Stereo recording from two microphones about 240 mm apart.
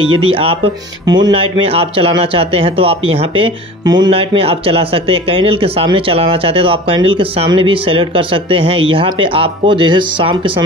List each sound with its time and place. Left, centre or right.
0.1 s speech: right